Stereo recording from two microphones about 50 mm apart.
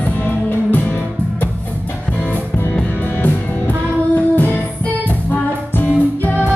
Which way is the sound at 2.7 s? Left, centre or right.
Left.